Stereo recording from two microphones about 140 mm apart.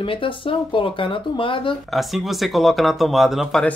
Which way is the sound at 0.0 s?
40° left (ahead or behind).